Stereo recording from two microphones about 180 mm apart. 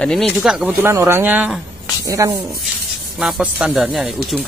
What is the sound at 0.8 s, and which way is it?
Speech, 15° right (ahead or behind).